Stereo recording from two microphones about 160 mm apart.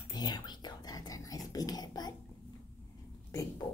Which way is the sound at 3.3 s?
20° left (ahead or behind).